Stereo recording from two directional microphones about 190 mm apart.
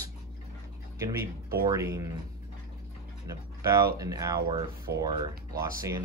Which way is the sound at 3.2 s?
15° right (ahead or behind).